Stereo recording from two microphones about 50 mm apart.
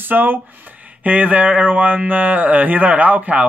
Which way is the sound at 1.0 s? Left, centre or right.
Right.